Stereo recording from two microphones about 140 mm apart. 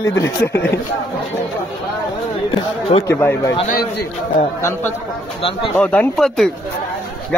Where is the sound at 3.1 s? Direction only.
15° left (ahead or behind).